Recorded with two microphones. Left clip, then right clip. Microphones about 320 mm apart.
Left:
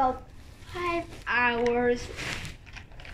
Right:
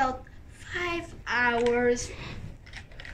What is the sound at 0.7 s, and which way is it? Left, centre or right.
Child singing, right.